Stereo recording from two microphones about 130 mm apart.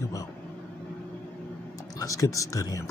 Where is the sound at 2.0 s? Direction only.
25° left (ahead or behind).